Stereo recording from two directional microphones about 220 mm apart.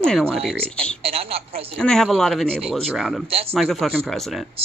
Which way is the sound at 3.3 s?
25° right (ahead or behind).